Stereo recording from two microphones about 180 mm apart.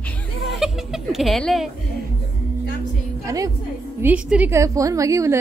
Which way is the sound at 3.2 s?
20° right (ahead or behind).